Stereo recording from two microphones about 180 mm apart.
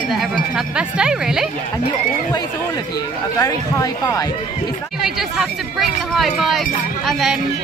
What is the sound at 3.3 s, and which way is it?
Speech, 20° left (ahead or behind).